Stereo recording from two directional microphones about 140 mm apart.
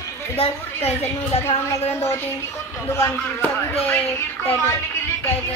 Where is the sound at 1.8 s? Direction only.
50° left (ahead or behind).